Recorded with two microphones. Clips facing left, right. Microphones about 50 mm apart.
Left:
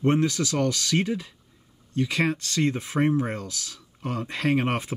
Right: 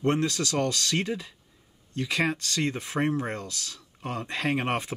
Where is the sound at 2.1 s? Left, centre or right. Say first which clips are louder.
Even; right.